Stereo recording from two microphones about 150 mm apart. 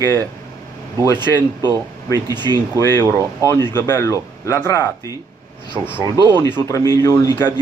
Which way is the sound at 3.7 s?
15° left (ahead or behind).